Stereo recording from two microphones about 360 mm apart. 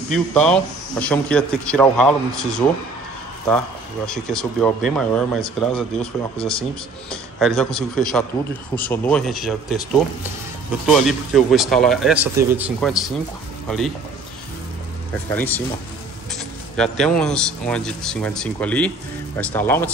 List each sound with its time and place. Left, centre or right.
0.1 s a man's voice: centre
6.3 s speech: centre
7.1 s a man's voice: centre
10.9 s a man's voice: centre
15.2 s a man's voice: centre
16.7 s a man's voice: centre